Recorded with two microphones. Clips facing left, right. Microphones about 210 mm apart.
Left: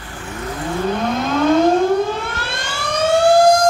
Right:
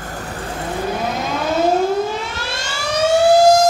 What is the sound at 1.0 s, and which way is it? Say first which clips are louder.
Civil defense siren: left 4 dB; 5° right (ahead or behind).